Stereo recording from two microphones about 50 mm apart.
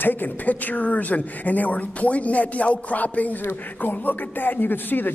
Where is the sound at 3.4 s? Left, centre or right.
Left.